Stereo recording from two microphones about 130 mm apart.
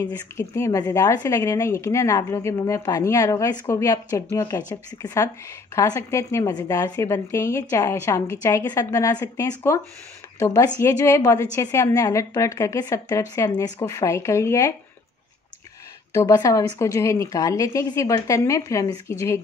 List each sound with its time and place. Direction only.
0.4 s a woman's voice: 25° left (ahead or behind)
16.2 s a woman's voice: 25° left (ahead or behind)